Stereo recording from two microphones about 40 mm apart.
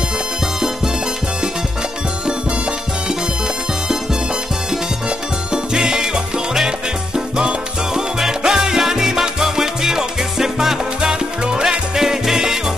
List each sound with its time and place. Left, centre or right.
5.5 s music: right
11.4 s music: right